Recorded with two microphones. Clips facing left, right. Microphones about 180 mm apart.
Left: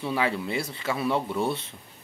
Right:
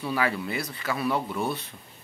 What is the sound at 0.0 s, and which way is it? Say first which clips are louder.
Speech: left 1 dB; 25° left (ahead or behind).